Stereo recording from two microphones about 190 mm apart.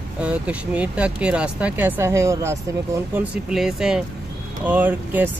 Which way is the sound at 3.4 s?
Centre (ahead or behind).